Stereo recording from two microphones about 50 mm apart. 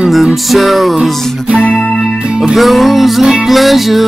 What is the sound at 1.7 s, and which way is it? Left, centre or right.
Music, centre.